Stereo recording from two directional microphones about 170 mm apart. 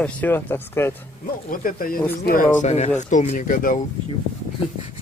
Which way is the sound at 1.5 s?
55° left (ahead or behind).